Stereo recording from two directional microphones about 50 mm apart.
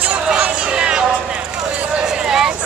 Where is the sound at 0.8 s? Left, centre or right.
Centre.